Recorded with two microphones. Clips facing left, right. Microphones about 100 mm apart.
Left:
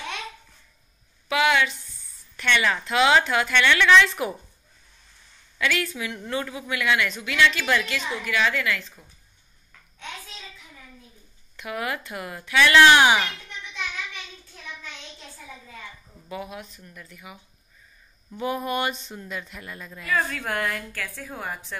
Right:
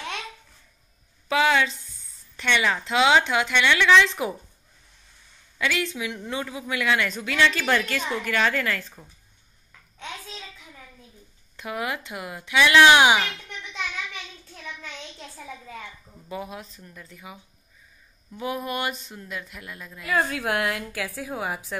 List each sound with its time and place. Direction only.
1.3 s a woman's voice: 30° right (ahead or behind)
5.6 s a woman's voice: 25° right (ahead or behind); by 9.0 s 40° right (ahead or behind)
11.5 s a woman's voice: 25° right (ahead or behind)
16.3 s a woman's voice: 25° right (ahead or behind)
18.4 s a woman's voice: centre (ahead or behind)